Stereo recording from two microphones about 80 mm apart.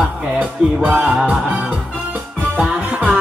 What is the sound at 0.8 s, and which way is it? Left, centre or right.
Music, centre.